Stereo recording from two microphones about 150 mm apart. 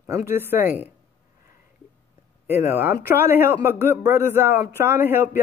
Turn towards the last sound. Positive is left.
turn(degrees=-15)  # may be behind; listen again after turning